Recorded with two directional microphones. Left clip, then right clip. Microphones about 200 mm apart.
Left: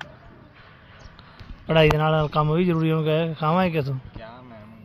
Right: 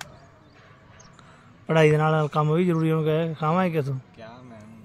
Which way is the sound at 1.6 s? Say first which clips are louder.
Left 1 dB; 5° right (ahead or behind).